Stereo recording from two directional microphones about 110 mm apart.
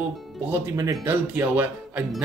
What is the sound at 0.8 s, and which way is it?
Speech, 25° right (ahead or behind).